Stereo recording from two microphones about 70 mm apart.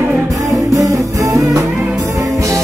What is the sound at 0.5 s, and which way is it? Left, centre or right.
Music, right.